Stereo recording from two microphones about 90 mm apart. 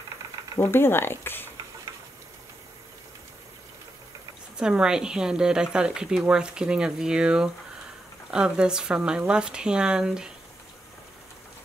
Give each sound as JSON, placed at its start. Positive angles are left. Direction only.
{"t": 0.6, "sound": "speech", "side_deg": 25}
{"t": 4.6, "sound": "speech", "side_deg": -10}